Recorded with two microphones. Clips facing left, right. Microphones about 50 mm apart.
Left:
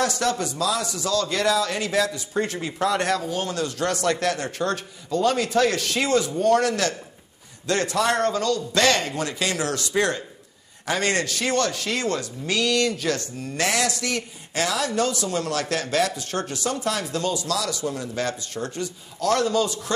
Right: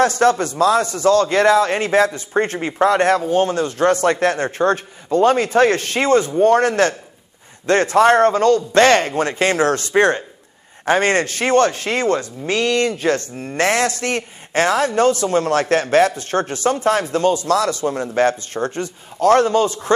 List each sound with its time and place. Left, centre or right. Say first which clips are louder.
0.0 s speech: right 9 dB; right